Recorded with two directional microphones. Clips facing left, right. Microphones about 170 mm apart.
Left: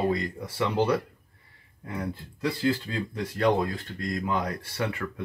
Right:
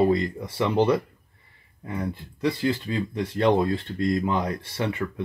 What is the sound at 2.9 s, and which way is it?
Speech, 20° right (ahead or behind).